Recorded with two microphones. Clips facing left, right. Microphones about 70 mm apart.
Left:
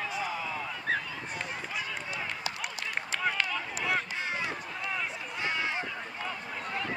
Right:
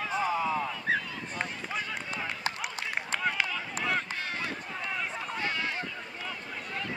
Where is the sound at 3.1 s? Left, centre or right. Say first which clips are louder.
Even; centre.